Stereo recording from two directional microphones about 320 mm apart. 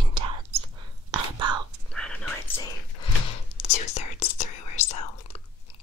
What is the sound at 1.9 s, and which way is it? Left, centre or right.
Whispering, centre.